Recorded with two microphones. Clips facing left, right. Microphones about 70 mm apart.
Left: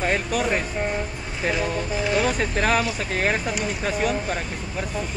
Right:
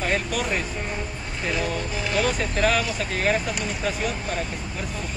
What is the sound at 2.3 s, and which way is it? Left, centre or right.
Speech, left.